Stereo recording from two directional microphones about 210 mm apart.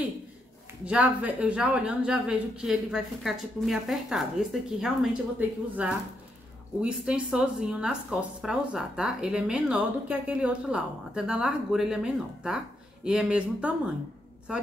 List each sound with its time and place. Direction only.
0.8 s speech: 5° right (ahead or behind)